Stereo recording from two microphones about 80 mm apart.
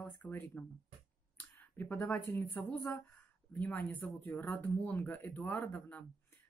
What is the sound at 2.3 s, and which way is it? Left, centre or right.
Speech, left.